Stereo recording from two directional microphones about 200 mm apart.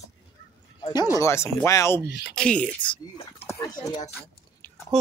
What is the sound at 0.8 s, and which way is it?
Speech, 20° left (ahead or behind).